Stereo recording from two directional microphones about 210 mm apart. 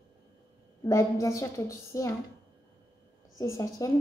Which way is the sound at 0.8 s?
15° left (ahead or behind).